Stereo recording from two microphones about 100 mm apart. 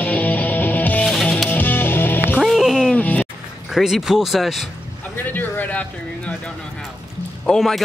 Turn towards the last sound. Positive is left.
turn(degrees=5)  # may be behind; listen again after turning